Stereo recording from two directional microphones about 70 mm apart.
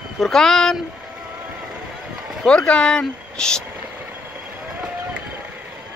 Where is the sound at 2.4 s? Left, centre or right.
Centre.